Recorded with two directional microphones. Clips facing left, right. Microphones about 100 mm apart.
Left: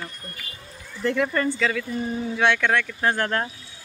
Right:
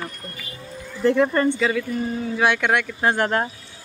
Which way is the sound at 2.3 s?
10° right (ahead or behind).